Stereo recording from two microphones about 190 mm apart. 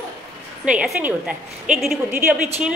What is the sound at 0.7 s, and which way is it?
A woman's voice, 5° right (ahead or behind).